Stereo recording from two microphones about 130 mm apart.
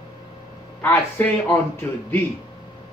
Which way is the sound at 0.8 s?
15° left (ahead or behind).